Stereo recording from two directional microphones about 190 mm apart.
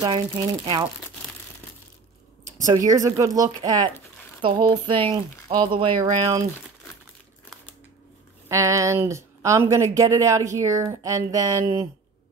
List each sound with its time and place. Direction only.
0.0 s speech: 25° right (ahead or behind)
2.6 s speech: 20° right (ahead or behind)
8.5 s speech: 15° right (ahead or behind)